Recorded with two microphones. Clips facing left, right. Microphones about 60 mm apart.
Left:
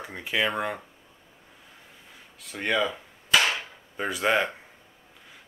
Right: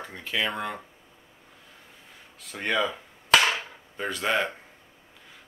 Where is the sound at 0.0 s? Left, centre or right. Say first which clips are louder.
Left 2 dB; centre.